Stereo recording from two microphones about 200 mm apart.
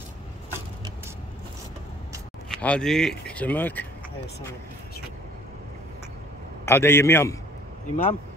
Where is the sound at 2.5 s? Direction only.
5° left (ahead or behind).